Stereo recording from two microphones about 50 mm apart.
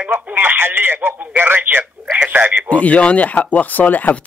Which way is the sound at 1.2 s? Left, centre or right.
Right.